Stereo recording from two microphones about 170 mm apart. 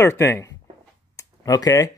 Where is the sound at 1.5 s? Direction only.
20° left (ahead or behind).